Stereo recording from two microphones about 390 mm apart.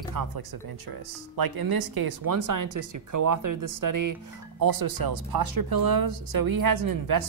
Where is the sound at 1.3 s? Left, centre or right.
Right.